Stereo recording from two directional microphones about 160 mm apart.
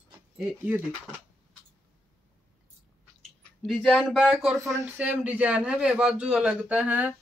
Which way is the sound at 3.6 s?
5° left (ahead or behind).